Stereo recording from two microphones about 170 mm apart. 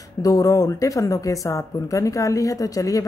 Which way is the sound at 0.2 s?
20° left (ahead or behind).